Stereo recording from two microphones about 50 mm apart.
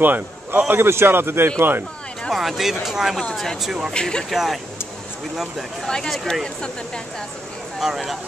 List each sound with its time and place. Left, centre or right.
0.0 s a man's voice: right
2.3 s speech: centre
3.9 s speech: centre
4.3 s speech: centre
5.9 s speech: centre
7.8 s speech: centre